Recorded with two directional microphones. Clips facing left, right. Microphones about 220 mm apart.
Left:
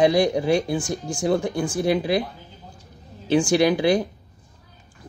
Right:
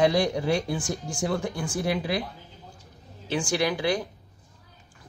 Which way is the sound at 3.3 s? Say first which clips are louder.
Left 8 dB; 20° left (ahead or behind).